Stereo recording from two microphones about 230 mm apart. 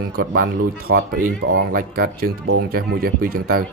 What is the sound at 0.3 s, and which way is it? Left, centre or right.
Speech, right.